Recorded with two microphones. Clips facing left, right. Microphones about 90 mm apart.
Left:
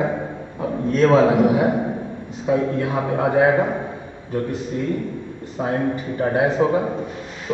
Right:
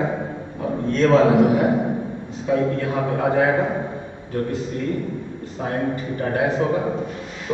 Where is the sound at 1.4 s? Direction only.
15° left (ahead or behind).